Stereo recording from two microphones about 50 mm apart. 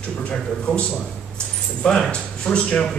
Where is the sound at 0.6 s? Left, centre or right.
Left.